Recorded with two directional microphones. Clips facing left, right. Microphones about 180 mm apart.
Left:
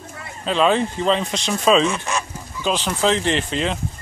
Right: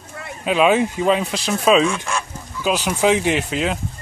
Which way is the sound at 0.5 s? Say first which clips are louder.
Right 2 dB; 10° right (ahead or behind).